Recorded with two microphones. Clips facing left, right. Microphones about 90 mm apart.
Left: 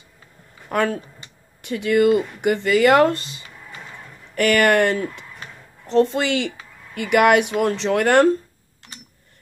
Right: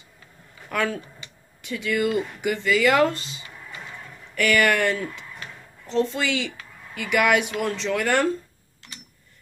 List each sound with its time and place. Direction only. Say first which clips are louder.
0.7 s a sound: left 4 dB; 40° left (ahead or behind)
2.4 s speech: left 4 dB; 55° left (ahead or behind)
4.4 s speech: left 4 dB; 50° left (ahead or behind)